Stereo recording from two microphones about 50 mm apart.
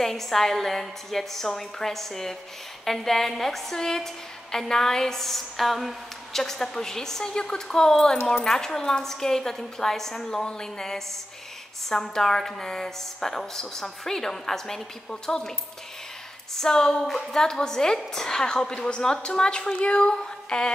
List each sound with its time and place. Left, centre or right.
0.0 s a woman's voice: centre
16.5 s a woman's voice: centre